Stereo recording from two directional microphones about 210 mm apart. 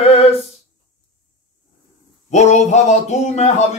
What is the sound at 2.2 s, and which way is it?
Speech, 30° left (ahead or behind).